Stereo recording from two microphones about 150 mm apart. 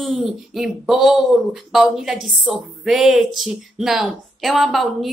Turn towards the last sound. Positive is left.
turn(degrees=0)  # may be behind; listen again after turning